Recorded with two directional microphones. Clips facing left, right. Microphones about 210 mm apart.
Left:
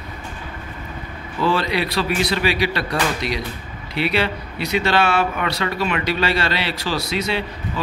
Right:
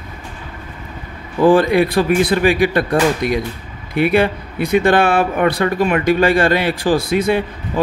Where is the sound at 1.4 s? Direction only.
50° right (ahead or behind).